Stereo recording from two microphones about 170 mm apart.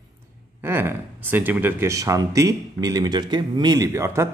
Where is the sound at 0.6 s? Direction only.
15° right (ahead or behind).